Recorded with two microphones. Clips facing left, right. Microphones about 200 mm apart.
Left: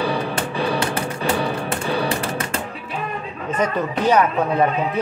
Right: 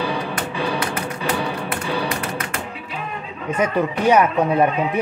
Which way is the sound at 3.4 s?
10° right (ahead or behind).